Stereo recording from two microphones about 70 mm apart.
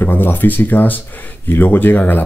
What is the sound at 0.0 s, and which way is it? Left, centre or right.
Speech, left.